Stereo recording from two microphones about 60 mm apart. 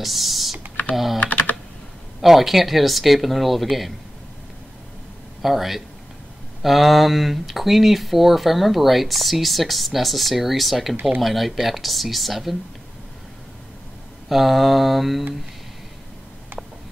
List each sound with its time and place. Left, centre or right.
0.0 s speech: centre
1.2 s typing: left
2.2 s speech: centre
5.4 s speech: centre
14.3 s speech: centre